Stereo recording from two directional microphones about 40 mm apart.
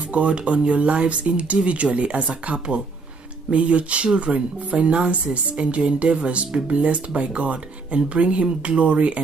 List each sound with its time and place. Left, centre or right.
0.1 s speech: right